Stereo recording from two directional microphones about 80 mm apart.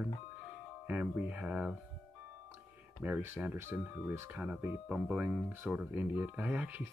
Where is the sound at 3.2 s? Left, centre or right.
Right.